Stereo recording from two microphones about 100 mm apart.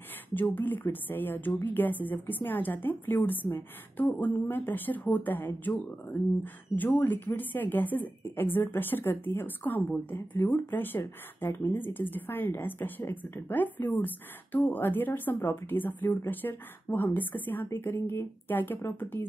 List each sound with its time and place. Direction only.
0.3 s a woman's voice: 20° left (ahead or behind)